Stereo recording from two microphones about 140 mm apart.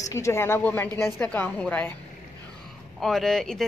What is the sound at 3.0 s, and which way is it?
Speech, 5° left (ahead or behind).